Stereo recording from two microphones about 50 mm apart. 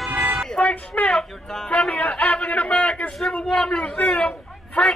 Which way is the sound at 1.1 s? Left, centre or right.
Centre.